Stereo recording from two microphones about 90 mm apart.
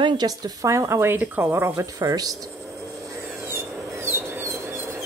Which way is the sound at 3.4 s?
30° right (ahead or behind).